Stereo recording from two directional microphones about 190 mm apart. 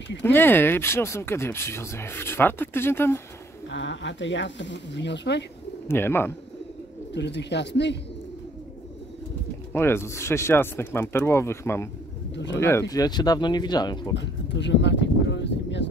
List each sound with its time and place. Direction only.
0.2 s speech: 10° left (ahead or behind)
3.6 s speech: 75° left (ahead or behind)
5.9 s speech: 10° left (ahead or behind)
7.1 s speech: 65° left (ahead or behind)
9.7 s speech: 10° left (ahead or behind)
14.1 s a sound: 70° left (ahead or behind)